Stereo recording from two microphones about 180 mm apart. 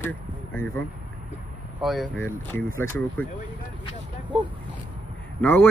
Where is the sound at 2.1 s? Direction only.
15° left (ahead or behind).